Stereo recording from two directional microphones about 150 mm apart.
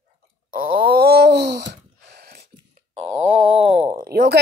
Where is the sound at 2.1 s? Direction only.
90° right.